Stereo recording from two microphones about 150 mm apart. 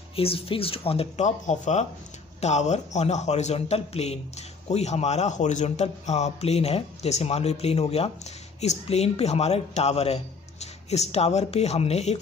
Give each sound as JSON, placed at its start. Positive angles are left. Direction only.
{"t": 0.1, "sound": "a man's voice", "side_deg": 40}